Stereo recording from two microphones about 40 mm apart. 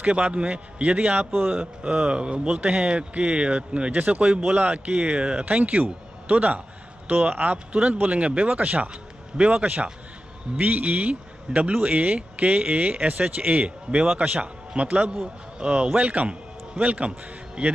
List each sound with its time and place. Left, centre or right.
0.0 s speech: right
4.6 s speech: right
7.5 s speech: right
14.7 s a man's voice: right
17.6 s a man's voice: centre